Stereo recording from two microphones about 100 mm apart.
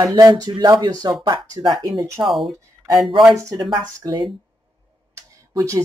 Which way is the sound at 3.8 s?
35° right (ahead or behind).